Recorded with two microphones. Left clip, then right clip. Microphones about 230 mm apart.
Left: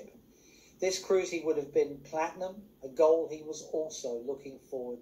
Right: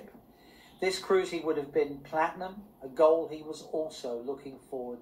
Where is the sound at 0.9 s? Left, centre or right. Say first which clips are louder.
Right 2 dB; centre.